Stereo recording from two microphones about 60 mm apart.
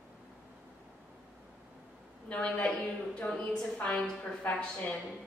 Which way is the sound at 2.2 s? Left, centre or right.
Centre.